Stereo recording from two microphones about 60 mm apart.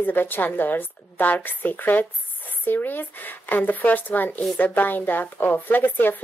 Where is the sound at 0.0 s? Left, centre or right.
Left.